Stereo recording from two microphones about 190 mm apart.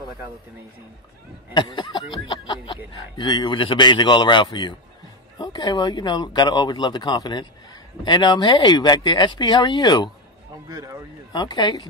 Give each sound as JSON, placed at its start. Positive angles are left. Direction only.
{"t": 1.5, "sound": "speech", "side_deg": 25}
{"t": 10.7, "sound": "speech", "side_deg": -15}
{"t": 11.3, "sound": "speech", "side_deg": 25}